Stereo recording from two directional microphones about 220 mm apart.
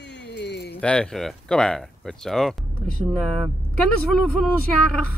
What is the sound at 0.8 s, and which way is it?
Speech, 5° left (ahead or behind).